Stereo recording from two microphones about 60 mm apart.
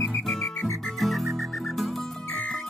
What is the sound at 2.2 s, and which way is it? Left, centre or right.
Music, left.